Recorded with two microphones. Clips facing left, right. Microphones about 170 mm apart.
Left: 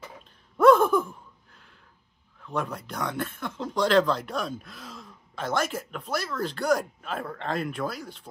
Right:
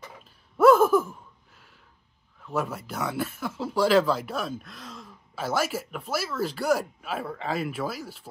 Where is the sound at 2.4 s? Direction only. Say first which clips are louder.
Right 1 dB; 5° right (ahead or behind).